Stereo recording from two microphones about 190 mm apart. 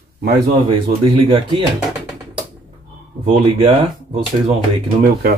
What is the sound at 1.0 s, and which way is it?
Speech, 25° right (ahead or behind).